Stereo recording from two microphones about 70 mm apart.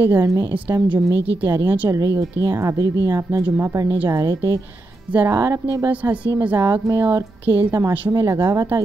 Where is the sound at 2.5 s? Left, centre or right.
Right.